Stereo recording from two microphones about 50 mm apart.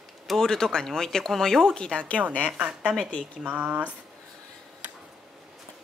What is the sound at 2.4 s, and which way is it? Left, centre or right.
A woman's voice, right.